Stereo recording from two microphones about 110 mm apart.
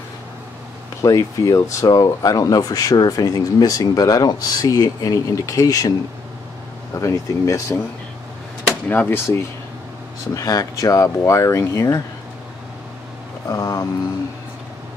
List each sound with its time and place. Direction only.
1.0 s speech: 30° left (ahead or behind)
7.0 s speech: 30° left (ahead or behind)
8.8 s speech: 15° left (ahead or behind)
10.3 s speech: 30° left (ahead or behind)
13.5 s speech: 35° left (ahead or behind)